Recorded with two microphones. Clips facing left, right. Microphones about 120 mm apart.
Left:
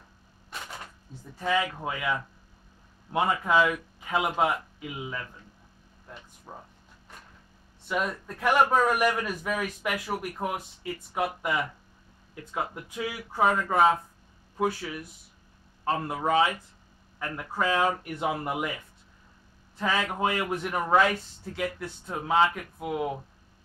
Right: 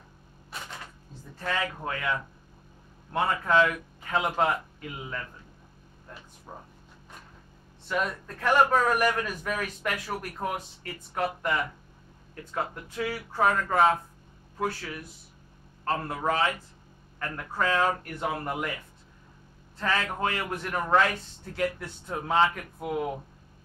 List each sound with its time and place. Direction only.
1.4 s a man's voice: 10° left (ahead or behind)
6.5 s a man's voice: 5° left (ahead or behind)
7.9 s a man's voice: 10° left (ahead or behind)
15.8 s a man's voice: 10° left (ahead or behind)
19.8 s a man's voice: 10° left (ahead or behind)